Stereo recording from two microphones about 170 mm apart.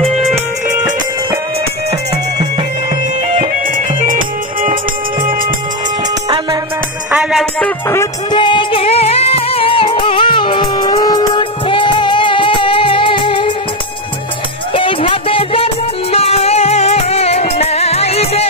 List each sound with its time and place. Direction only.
3.7 s music: 50° right (ahead or behind)
6.2 s music: 25° right (ahead or behind)
7.1 s music: 5° right (ahead or behind)
8.3 s music: 30° left (ahead or behind)
14.7 s music: 30° left (ahead or behind)